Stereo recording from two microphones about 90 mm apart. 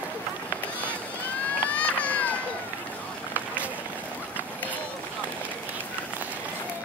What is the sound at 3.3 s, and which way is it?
Run, 15° right (ahead or behind).